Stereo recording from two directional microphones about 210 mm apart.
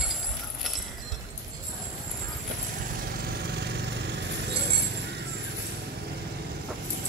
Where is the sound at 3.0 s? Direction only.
45° right (ahead or behind).